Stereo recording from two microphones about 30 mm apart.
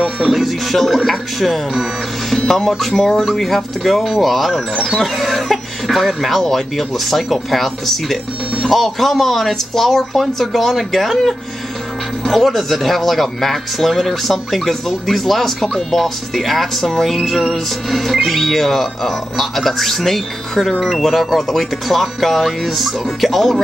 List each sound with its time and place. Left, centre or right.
0.3 s speech: centre